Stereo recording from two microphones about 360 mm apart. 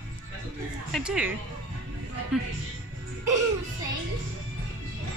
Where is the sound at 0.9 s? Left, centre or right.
Centre.